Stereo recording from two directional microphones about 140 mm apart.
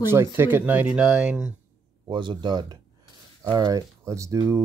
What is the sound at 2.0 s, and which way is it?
A man's voice, 35° right (ahead or behind).